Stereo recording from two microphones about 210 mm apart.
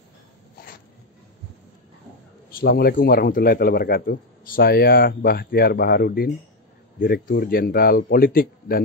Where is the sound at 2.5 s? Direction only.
50° left (ahead or behind).